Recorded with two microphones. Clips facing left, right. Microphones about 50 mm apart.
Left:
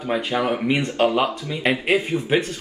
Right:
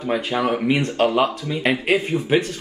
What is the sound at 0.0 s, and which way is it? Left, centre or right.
Speech, centre.